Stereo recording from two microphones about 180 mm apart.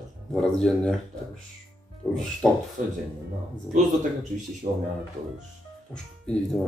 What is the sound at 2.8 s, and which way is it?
Speech, 45° right (ahead or behind).